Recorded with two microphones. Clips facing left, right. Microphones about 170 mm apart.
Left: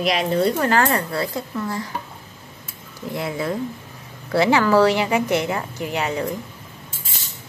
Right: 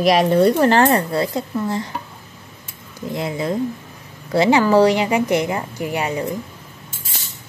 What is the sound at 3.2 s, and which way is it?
A woman's voice, 20° right (ahead or behind).